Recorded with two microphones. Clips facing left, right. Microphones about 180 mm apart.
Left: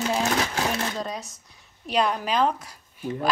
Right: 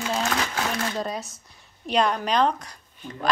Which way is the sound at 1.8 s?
5° left (ahead or behind).